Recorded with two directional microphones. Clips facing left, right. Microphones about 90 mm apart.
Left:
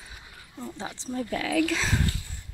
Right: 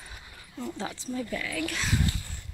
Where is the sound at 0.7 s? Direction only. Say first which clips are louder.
Right 1 dB; 20° left (ahead or behind).